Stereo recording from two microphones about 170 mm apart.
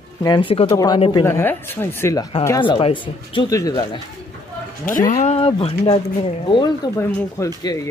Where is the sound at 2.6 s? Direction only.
30° left (ahead or behind).